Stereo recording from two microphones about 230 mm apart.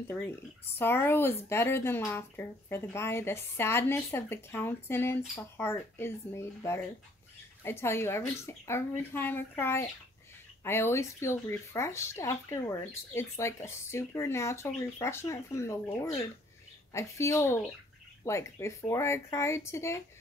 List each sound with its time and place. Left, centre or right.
0.7 s speech: centre